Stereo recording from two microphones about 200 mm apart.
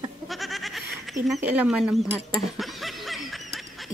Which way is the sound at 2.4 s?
Centre (ahead or behind).